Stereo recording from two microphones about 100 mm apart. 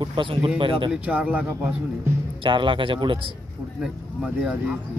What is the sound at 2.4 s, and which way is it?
Speech, 55° right (ahead or behind).